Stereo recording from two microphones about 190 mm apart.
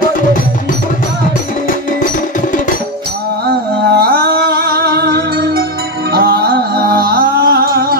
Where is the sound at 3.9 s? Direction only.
55° right (ahead or behind).